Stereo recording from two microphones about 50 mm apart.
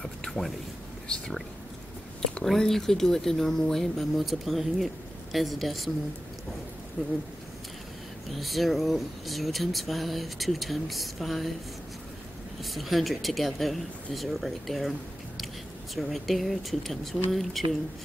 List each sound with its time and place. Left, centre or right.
0.0 s a man's voice: centre
2.4 s speech: centre
7.0 s speech: centre
8.3 s speech: centre
12.6 s speech: centre